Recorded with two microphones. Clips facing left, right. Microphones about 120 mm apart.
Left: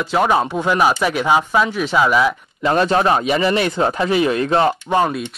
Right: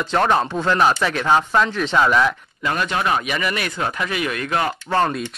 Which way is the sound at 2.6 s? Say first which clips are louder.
Left 7 dB; 30° left (ahead or behind).